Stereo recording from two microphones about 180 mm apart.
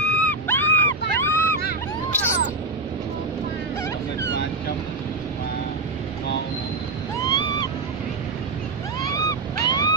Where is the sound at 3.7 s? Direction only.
15° left (ahead or behind).